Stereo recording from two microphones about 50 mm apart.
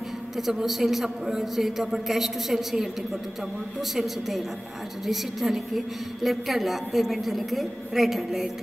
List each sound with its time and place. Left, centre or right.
0.4 s a woman's voice: centre
3.9 s a woman's voice: centre